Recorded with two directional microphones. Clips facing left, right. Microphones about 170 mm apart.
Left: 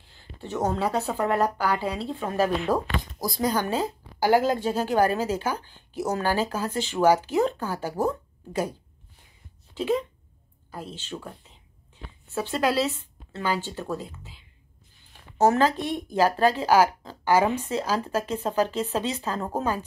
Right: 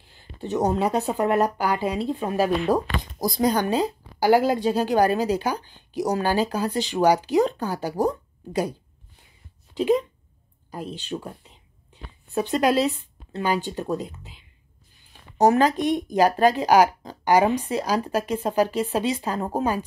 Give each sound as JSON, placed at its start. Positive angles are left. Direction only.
{"t": 0.1, "sound": "speech", "side_deg": -15}
{"t": 9.8, "sound": "speech", "side_deg": -15}
{"t": 12.4, "sound": "speech", "side_deg": -20}